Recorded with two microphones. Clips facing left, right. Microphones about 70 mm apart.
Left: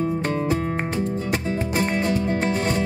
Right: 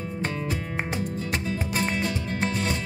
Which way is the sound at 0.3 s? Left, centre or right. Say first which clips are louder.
Left 8 dB; left.